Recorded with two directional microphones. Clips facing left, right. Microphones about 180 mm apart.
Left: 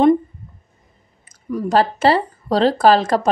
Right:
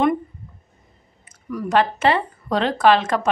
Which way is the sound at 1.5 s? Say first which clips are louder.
Left 2 dB; 35° left (ahead or behind).